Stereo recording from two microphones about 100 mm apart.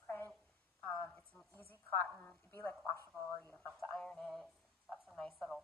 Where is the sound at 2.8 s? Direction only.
25° left (ahead or behind).